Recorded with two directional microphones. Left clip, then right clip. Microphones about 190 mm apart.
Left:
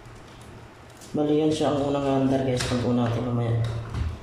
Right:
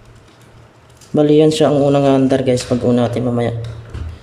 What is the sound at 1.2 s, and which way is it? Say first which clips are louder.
A man's voice: right 12 dB; 55° right (ahead or behind).